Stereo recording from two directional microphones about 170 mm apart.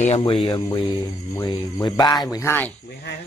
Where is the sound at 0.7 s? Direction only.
25° left (ahead or behind).